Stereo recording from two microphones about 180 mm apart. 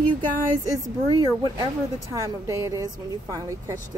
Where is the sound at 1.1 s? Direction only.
25° right (ahead or behind).